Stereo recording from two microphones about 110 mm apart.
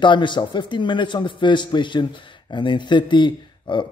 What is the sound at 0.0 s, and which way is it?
Speech, 45° left (ahead or behind).